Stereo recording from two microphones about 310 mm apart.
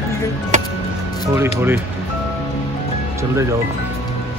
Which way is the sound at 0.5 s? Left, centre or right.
Right.